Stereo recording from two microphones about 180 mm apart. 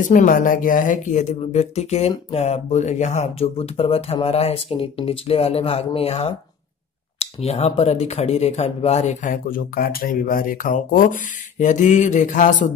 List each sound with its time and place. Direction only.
0.0 s speech: 45° left (ahead or behind)